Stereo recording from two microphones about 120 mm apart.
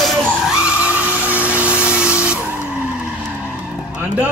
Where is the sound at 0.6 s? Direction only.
15° right (ahead or behind).